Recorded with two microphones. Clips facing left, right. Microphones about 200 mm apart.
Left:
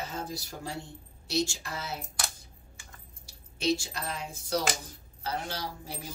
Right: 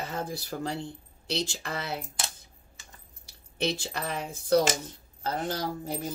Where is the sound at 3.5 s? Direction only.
60° right (ahead or behind).